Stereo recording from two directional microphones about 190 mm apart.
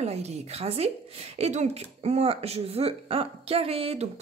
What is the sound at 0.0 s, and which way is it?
A woman's voice, 35° right (ahead or behind).